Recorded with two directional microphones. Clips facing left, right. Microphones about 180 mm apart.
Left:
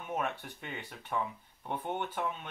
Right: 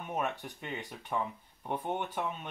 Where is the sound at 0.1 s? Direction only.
15° right (ahead or behind).